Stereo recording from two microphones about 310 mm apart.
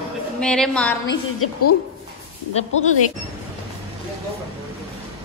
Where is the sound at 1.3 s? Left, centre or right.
Left.